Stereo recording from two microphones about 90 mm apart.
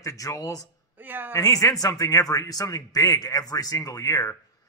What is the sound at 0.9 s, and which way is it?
Speech, 20° right (ahead or behind).